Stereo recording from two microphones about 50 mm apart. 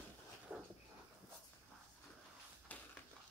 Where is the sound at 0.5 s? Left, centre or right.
Right.